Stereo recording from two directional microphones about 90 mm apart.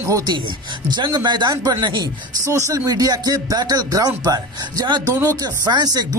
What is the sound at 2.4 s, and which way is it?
Speech, 35° right (ahead or behind).